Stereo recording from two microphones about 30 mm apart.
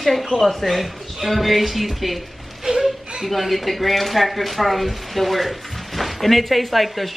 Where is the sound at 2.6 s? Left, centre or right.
Right.